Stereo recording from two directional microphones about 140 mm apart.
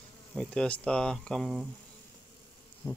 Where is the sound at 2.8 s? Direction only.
25° left (ahead or behind).